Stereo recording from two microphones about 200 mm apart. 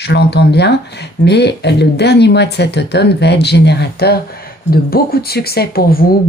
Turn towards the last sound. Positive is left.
turn(degrees=50)  # may be behind; listen again after turning